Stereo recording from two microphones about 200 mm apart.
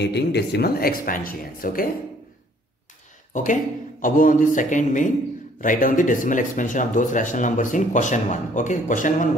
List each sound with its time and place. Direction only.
0.0 s speech: 55° left (ahead or behind)
3.3 s speech: 40° left (ahead or behind)